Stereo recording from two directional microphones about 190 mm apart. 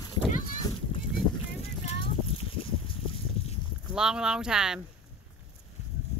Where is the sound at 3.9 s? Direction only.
5° right (ahead or behind).